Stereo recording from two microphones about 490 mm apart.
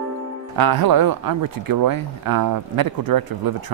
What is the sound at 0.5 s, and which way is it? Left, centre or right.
A man's voice, right.